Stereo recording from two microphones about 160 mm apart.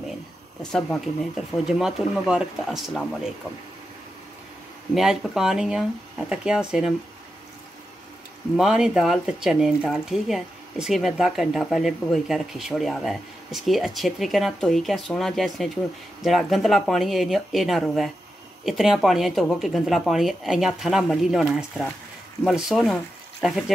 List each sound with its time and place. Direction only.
0.7 s speech: 5° left (ahead or behind)
4.9 s speech: 5° right (ahead or behind)
8.5 s speech: 5° right (ahead or behind)